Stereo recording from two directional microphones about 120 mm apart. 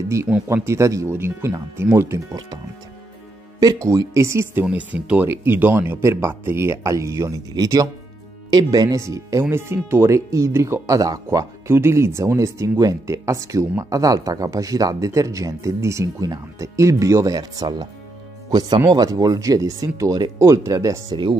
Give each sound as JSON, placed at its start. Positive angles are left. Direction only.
{"t": 0.3, "sound": "speech", "side_deg": -5}
{"t": 0.7, "sound": "speech", "side_deg": -25}
{"t": 3.5, "sound": "speech", "side_deg": -30}
{"t": 4.6, "sound": "speech", "side_deg": -10}